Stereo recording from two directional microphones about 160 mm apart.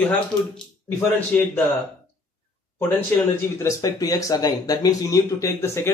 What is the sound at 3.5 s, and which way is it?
Speech, 20° left (ahead or behind).